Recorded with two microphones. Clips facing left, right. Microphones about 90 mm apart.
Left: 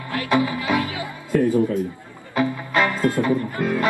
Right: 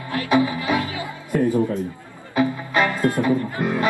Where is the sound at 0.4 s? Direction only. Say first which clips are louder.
Right 1 dB; 25° right (ahead or behind).